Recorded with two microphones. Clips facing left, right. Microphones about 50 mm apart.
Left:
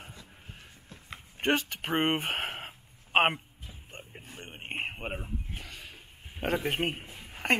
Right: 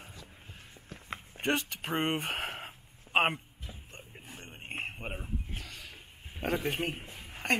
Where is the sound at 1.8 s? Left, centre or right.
Left.